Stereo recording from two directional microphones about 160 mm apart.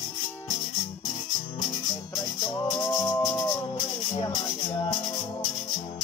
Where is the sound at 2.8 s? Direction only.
25° left (ahead or behind).